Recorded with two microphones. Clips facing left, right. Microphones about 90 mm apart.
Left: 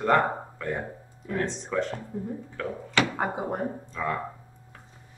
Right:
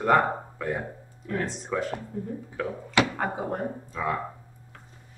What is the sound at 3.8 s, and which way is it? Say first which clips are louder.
Speech: right 1 dB; 5° right (ahead or behind).